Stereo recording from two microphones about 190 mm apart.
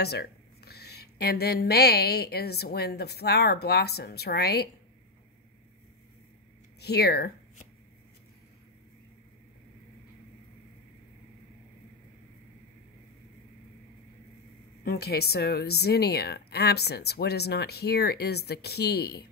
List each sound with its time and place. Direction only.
0.0 s speech: 55° left (ahead or behind)
6.8 s speech: 55° left (ahead or behind)
14.9 s speech: 60° left (ahead or behind)